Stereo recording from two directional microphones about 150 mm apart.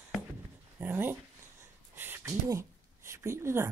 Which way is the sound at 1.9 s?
15° right (ahead or behind).